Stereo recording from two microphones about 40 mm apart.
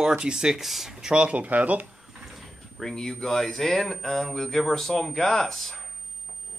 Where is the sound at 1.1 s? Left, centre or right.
Right.